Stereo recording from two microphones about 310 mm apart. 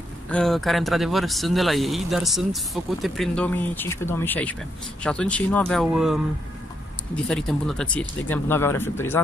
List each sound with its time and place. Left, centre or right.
0.3 s speech: centre
7.2 s speech: centre